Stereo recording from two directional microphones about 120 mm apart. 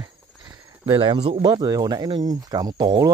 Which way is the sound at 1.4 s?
35° right (ahead or behind).